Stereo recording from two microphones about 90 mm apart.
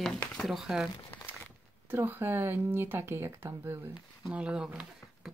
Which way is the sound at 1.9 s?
25° right (ahead or behind).